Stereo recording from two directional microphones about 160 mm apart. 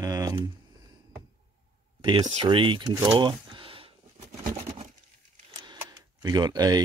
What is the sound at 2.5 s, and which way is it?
Speech, 30° right (ahead or behind).